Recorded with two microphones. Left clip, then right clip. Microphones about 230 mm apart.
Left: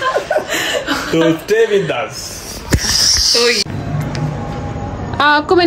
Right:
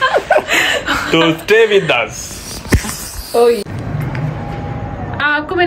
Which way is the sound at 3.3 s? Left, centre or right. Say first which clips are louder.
Right 1 dB; centre.